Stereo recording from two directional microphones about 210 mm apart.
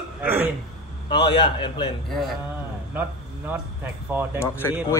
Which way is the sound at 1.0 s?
25° left (ahead or behind).